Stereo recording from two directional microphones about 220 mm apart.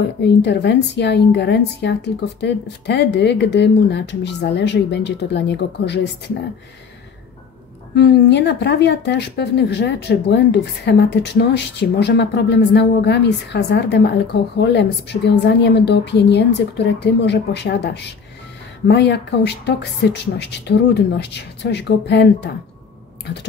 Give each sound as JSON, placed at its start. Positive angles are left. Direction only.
{"t": 0.2, "sound": "a woman's voice", "side_deg": 50}
{"t": 7.9, "sound": "a woman's voice", "side_deg": 50}